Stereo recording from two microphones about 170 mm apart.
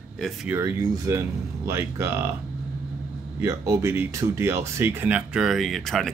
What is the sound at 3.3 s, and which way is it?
Speech, 15° right (ahead or behind).